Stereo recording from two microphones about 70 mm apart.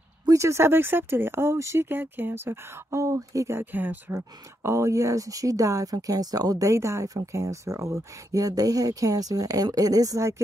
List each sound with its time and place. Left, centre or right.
0.3 s speech: right
1.9 s speech: right
3.5 s speech: right
4.6 s speech: right